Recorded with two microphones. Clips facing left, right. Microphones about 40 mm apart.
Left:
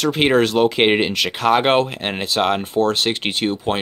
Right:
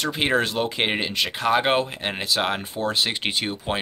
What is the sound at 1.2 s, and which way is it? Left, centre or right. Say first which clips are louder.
Speech: left 4 dB; left.